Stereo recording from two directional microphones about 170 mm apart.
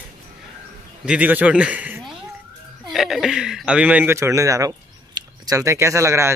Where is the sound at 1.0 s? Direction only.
5° right (ahead or behind).